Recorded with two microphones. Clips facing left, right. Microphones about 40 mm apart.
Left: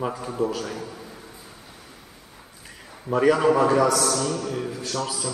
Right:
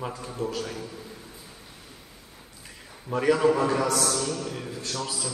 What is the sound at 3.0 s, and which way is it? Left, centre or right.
Speech, centre.